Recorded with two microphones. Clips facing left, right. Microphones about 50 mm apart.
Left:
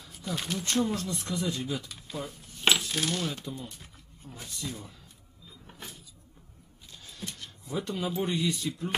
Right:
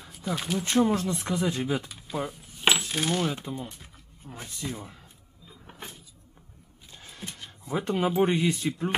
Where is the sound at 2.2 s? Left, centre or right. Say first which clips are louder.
Right 6 dB; centre.